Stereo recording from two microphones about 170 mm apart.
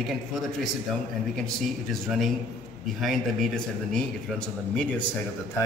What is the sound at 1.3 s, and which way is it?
A man's voice, centre (ahead or behind).